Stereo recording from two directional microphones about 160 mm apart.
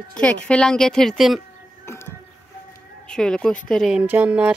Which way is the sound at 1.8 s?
15° left (ahead or behind).